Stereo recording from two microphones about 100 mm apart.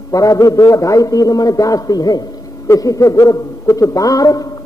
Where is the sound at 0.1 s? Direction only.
35° left (ahead or behind).